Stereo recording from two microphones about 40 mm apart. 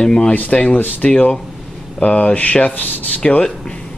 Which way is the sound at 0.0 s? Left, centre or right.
Centre.